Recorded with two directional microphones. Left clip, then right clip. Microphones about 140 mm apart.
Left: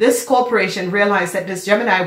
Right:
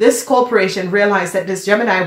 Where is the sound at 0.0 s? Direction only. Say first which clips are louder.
Right 2 dB; 35° right (ahead or behind).